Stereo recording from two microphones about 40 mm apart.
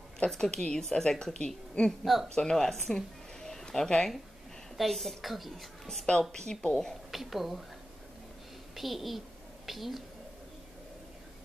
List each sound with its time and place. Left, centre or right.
0.3 s a woman's voice: centre
1.9 s a woman's voice: centre
2.2 s speech: centre
3.3 s a sound: centre
4.7 s a woman's voice: centre
7.1 s a woman's voice: centre
8.7 s a woman's voice: centre